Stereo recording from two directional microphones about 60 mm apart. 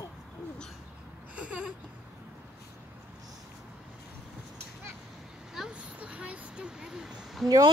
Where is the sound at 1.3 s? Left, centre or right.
Right.